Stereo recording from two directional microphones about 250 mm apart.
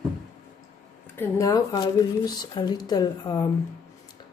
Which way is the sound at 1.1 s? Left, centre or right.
Centre.